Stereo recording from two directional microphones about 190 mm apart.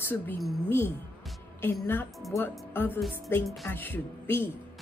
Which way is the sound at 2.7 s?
10° left (ahead or behind).